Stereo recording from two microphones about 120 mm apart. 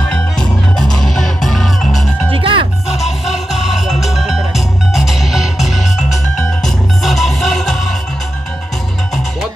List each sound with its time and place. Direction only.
0.1 s music: 5° left (ahead or behind)
2.3 s music: 45° right (ahead or behind)
3.8 s music: centre (ahead or behind)